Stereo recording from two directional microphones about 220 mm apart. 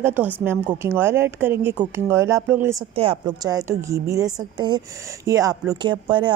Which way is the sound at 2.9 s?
25° right (ahead or behind).